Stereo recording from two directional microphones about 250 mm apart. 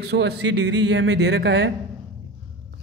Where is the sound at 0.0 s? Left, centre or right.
Right.